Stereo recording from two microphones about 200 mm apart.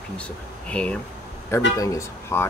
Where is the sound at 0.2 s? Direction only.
5° left (ahead or behind).